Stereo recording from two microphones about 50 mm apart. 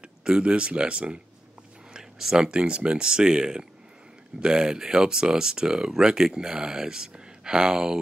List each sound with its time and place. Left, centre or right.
0.2 s speech: centre
2.0 s speech: centre